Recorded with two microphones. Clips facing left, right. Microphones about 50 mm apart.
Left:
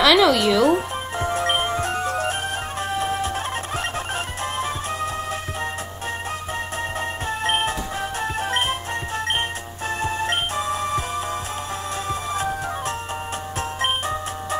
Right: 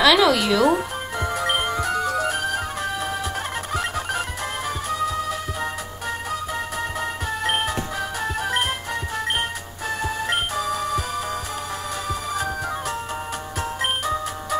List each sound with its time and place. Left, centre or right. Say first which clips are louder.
0.0 s speech: left 1 dB; centre
1.5 s music: left 1 dB; centre
1.8 s music: right 1 dB; left
4.6 s music: right 1 dB; left
7.0 s music: left 1 dB; left
13.7 s music: even; left